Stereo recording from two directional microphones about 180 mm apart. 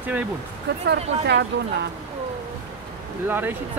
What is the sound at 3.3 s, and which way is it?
Speech, 10° right (ahead or behind).